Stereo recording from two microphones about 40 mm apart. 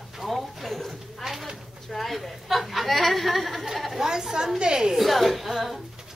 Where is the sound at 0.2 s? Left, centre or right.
Centre.